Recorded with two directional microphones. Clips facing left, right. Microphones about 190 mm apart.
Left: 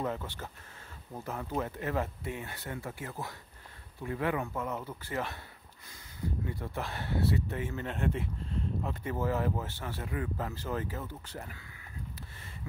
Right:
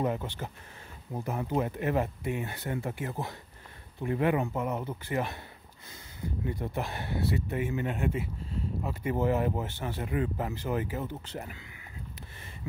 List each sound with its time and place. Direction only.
0.0 s speech: 20° right (ahead or behind)
6.4 s speech: 20° right (ahead or behind)
9.1 s speech: 20° right (ahead or behind)